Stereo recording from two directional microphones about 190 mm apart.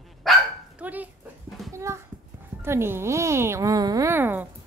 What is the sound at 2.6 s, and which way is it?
A woman's voice, 15° right (ahead or behind).